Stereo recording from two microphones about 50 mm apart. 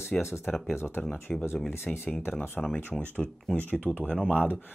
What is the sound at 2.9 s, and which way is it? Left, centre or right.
Speech, centre.